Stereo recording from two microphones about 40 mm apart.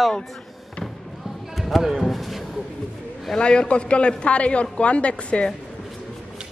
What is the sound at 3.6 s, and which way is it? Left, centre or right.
A woman's voice, left.